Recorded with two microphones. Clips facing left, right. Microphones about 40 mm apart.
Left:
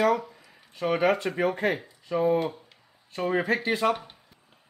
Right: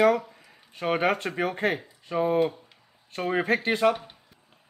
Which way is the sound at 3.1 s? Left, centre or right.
Right.